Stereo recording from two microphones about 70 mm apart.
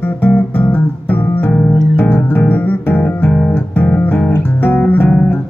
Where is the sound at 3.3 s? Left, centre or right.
Centre.